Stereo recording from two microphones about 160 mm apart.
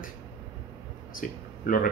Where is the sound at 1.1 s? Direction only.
60° left (ahead or behind).